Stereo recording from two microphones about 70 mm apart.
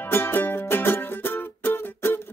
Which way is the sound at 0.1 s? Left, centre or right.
Left.